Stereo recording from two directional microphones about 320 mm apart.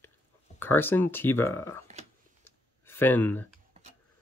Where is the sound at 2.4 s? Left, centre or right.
Centre.